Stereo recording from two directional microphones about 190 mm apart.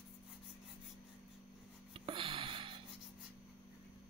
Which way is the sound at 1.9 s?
25° right (ahead or behind).